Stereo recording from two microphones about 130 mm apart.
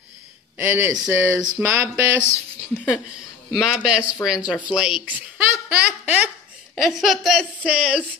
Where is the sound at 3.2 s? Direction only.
5° right (ahead or behind).